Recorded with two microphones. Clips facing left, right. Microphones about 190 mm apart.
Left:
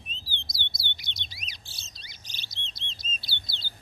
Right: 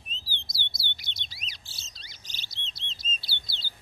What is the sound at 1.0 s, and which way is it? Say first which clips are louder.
Bird: left 1 dB; 15° left (ahead or behind).